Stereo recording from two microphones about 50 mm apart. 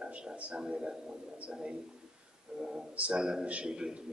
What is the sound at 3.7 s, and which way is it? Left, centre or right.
Speech, centre.